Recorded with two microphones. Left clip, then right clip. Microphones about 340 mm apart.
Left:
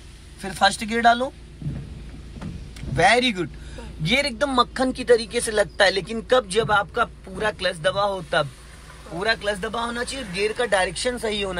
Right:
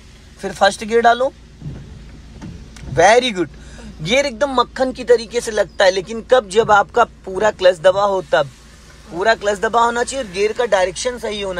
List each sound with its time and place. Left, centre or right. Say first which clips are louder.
0.4 s speech: right 5 dB; centre
3.0 s speech: right 6 dB; centre